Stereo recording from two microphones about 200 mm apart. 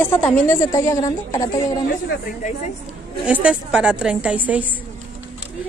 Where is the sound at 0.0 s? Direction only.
10° left (ahead or behind).